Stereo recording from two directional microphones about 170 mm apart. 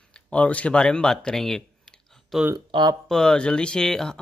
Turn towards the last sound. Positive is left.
turn(degrees=5)  # may be behind; listen again after turning